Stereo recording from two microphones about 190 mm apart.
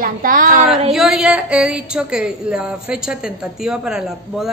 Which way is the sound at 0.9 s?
5° right (ahead or behind).